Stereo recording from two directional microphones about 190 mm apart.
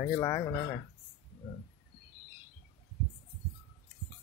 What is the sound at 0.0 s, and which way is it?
Speech, 15° left (ahead or behind).